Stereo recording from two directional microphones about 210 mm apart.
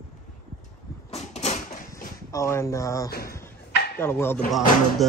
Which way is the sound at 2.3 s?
15° left (ahead or behind).